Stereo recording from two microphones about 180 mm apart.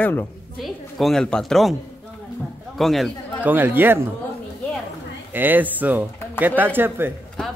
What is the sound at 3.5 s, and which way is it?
Speech, 10° right (ahead or behind).